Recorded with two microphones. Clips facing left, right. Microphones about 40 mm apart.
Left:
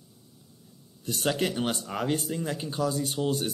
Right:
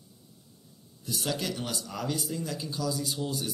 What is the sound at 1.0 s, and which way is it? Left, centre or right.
Speech, left.